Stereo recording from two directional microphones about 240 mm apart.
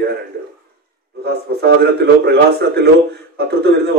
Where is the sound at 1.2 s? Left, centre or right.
Right.